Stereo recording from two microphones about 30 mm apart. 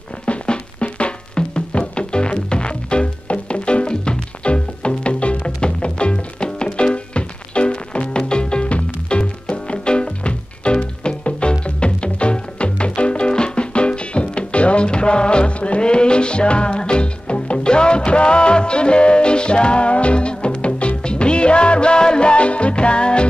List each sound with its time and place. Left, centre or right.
0.2 s music: left